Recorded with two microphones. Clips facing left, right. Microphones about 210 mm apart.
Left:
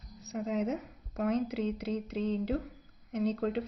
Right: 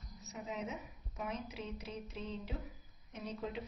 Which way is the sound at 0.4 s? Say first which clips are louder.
Left 11 dB; 60° left (ahead or behind).